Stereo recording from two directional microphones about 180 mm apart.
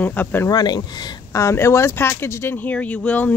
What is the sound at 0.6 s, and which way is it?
Speech, 25° left (ahead or behind).